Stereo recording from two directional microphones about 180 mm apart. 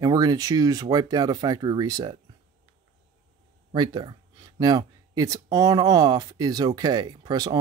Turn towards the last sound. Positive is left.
turn(degrees=-20)  # may be behind; listen again after turning